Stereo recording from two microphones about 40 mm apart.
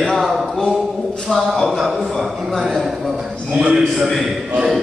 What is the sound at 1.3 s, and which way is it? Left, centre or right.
Speech, centre.